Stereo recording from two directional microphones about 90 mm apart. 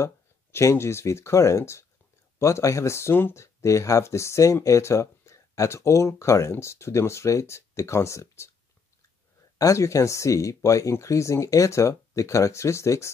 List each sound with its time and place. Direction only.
0.0 s speech: 30° left (ahead or behind)
9.6 s speech: 35° left (ahead or behind)